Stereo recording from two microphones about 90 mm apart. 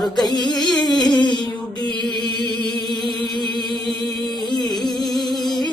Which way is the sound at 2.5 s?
55° right (ahead or behind).